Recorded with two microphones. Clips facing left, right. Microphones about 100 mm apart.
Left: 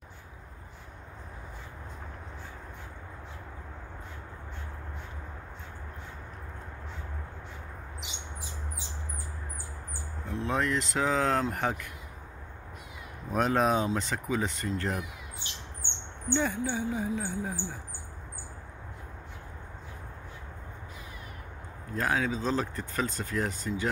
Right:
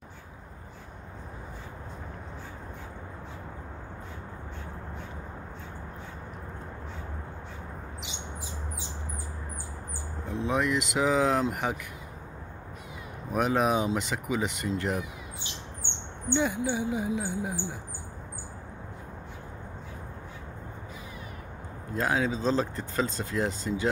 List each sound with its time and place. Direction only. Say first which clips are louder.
10.4 s speech: right 2 dB; 10° right (ahead or behind)
13.3 s speech: even; 10° right (ahead or behind)
16.3 s speech: right 2 dB; 15° right (ahead or behind)
21.9 s speech: right 2 dB; 20° right (ahead or behind)